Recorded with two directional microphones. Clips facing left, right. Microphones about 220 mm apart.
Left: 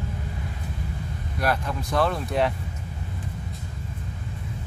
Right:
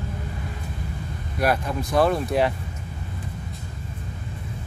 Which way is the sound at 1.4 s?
15° right (ahead or behind).